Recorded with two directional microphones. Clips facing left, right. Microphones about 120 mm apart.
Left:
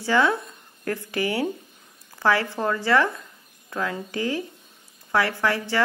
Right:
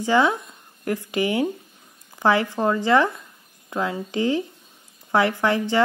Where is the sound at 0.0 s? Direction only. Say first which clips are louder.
Right 2 dB; 15° right (ahead or behind).